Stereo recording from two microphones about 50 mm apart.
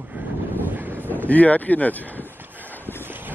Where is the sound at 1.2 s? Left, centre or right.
Left.